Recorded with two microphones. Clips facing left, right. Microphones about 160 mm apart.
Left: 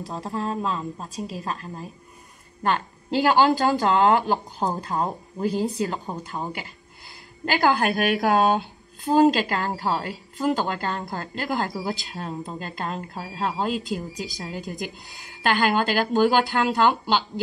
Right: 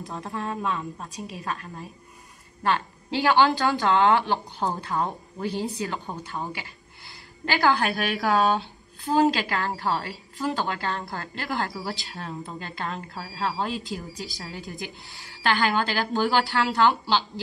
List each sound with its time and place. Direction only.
0.2 s a woman's voice: 35° left (ahead or behind)
2.6 s speech: 45° left (ahead or behind)
7.4 s a woman's voice: 45° left (ahead or behind)